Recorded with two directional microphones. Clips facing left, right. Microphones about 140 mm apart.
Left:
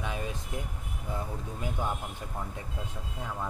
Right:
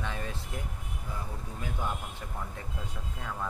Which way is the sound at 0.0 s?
15° left (ahead or behind).